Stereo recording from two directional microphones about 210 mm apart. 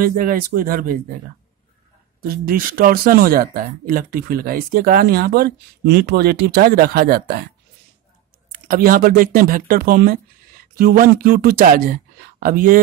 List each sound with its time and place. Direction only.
0.0 s speech: 45° right (ahead or behind)
2.2 s speech: 45° right (ahead or behind)
8.6 s speech: 40° right (ahead or behind)